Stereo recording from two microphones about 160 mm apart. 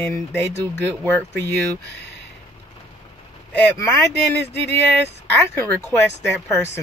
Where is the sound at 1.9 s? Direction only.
90° left.